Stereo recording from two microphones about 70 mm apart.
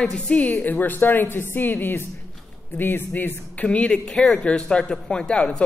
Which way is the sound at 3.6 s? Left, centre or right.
Centre.